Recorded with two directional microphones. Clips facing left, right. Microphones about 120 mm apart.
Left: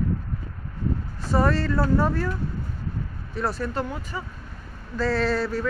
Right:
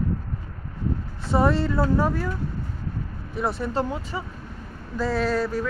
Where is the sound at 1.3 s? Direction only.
20° right (ahead or behind).